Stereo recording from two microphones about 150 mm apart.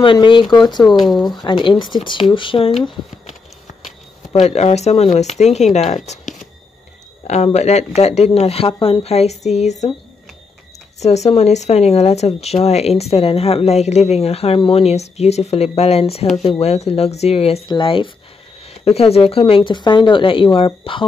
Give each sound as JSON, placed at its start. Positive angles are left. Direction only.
{"t": 0.0, "sound": "speech", "side_deg": 35}
{"t": 4.3, "sound": "speech", "side_deg": 45}
{"t": 11.0, "sound": "speech", "side_deg": 45}